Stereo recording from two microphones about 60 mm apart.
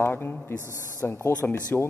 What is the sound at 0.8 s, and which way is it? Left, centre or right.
Speech, left.